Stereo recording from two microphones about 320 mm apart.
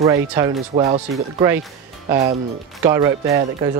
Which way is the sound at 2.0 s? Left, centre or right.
Centre.